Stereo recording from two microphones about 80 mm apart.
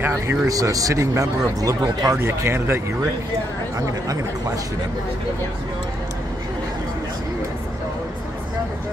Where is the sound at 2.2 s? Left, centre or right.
Right.